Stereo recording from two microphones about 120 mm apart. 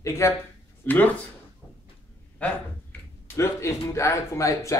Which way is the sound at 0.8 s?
15° left (ahead or behind).